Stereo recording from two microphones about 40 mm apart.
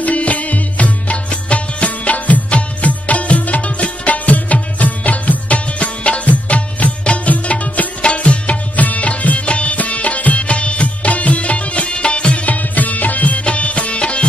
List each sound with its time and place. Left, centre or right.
0.0 s music: left
8.0 s music: left
12.4 s music: left